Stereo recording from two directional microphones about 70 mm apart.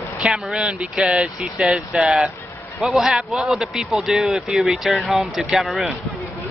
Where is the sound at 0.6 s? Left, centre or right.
Centre.